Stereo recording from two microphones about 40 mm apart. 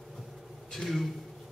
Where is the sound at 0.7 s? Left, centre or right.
Centre.